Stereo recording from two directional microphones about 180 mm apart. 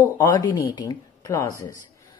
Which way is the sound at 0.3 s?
20° left (ahead or behind).